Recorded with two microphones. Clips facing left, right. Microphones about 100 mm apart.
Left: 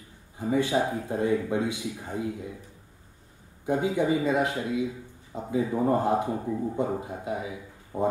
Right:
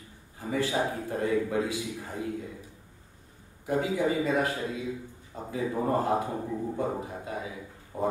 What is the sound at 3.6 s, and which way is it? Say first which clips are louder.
A man's voice: left 2 dB; 25° left (ahead or behind).